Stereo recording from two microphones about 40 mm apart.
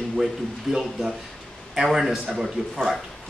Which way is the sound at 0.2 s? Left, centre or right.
Centre.